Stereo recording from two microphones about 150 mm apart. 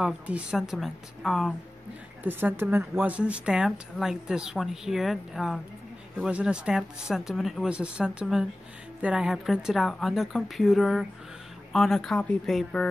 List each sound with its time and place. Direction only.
0.0 s a woman's voice: 5° right (ahead or behind)
2.2 s a woman's voice: 15° right (ahead or behind); by 12.8 s 5° left (ahead or behind)